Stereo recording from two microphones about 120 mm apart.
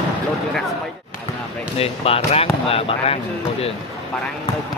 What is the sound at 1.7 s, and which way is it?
Speech, 55° left (ahead or behind).